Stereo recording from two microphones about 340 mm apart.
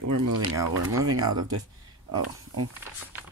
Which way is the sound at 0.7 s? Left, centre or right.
Right.